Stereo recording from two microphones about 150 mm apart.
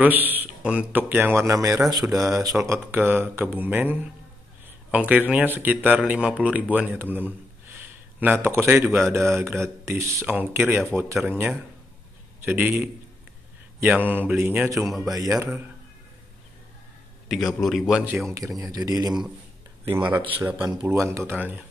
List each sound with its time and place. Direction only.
0.0 s speech: 10° right (ahead or behind)
2.0 s speech: centre (ahead or behind)
2.6 s speech: 15° right (ahead or behind)
7.8 s a sound: 10° right (ahead or behind)
8.7 s speech: 5° right (ahead or behind)
9.8 s speech: 20° right (ahead or behind)
12.4 s speech: 10° right (ahead or behind)
13.8 s speech: 10° right (ahead or behind)
14.9 s speech: centre (ahead or behind)
15.1 s speech: 20° right (ahead or behind)
17.3 s speech: centre (ahead or behind)
18.6 s speech: 25° right (ahead or behind)
19.9 s speech: 10° right (ahead or behind)